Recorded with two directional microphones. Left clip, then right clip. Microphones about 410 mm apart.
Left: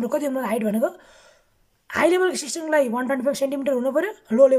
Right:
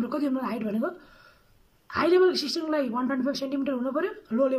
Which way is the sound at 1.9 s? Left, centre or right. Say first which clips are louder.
Left 2 dB; centre.